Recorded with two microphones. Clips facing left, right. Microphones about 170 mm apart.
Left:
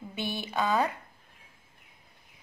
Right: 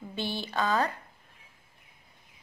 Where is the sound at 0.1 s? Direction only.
15° left (ahead or behind).